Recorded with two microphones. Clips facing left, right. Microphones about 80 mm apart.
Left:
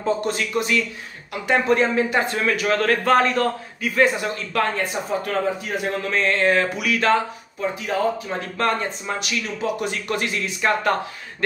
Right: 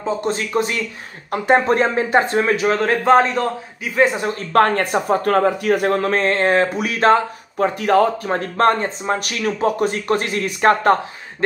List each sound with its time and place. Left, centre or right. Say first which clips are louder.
0.0 s a man's voice: right 1 dB; right
4.5 s speech: right 9 dB; right
7.5 s speech: right 9 dB; right